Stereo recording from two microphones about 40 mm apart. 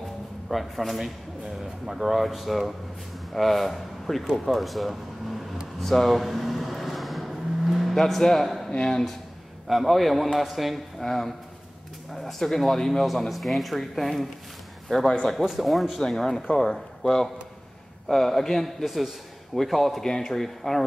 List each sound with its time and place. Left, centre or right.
0.5 s a man's voice: centre
5.8 s a sound: centre
7.9 s speech: centre
8.7 s speech: centre
9.7 s a man's voice: centre
12.1 s bird: centre
12.4 s a man's voice: centre
15.4 s a man's voice: centre
16.0 s a man's voice: centre